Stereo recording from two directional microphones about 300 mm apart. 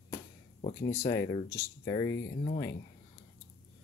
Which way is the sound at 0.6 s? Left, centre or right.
Left.